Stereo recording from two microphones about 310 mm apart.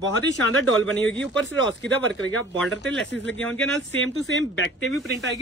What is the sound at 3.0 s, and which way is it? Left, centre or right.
Speech, left.